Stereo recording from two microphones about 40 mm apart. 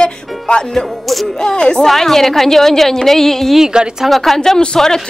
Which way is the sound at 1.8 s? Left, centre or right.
Centre.